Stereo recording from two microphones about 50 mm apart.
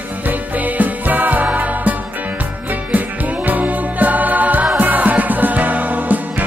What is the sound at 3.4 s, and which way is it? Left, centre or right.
Music, right.